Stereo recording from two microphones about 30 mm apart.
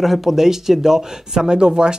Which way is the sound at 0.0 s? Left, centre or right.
Centre.